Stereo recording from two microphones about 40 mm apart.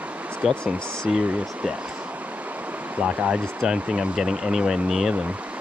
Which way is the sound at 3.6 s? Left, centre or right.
Centre.